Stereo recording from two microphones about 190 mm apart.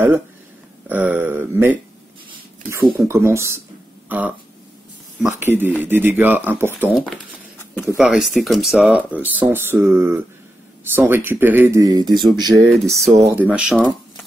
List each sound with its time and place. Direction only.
0.8 s speech: 10° right (ahead or behind)
5.4 s speech: 10° right (ahead or behind)
7.0 s a sound: 5° left (ahead or behind)
8.0 s speech: 5° right (ahead or behind); by 12.6 s 20° right (ahead or behind)
12.6 s speech: centre (ahead or behind)
13.3 s speech: 10° right (ahead or behind)